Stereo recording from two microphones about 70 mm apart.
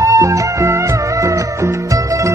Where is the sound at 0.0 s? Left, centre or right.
Right.